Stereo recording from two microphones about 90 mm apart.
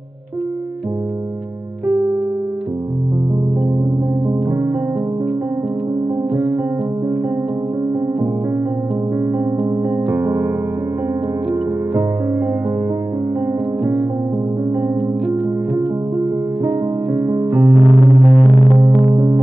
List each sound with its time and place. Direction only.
6.3 s music: 35° right (ahead or behind)
9.8 s music: 30° right (ahead or behind)
15.0 s music: 5° right (ahead or behind)
16.6 s music: 35° right (ahead or behind)
17.7 s music: centre (ahead or behind)
18.8 s music: 50° right (ahead or behind)